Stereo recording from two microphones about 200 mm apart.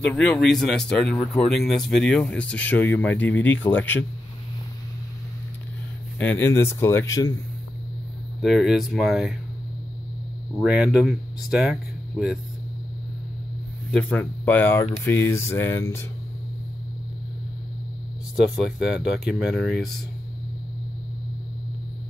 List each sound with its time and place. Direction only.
0.0 s speech: 5° left (ahead or behind)
6.1 s speech: 10° left (ahead or behind)
8.4 s speech: centre (ahead or behind)
10.6 s speech: 5° right (ahead or behind)
13.9 s speech: 10° left (ahead or behind)
18.3 s speech: 5° right (ahead or behind)